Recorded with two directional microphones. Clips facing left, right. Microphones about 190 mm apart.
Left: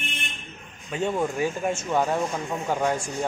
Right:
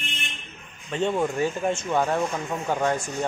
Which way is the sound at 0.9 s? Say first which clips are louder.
Right 1 dB; 5° left (ahead or behind).